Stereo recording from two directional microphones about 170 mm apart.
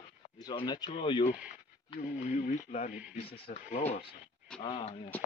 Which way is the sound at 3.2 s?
35° left (ahead or behind).